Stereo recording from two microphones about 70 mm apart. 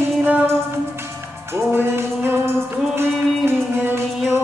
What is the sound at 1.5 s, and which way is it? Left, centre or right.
Music, right.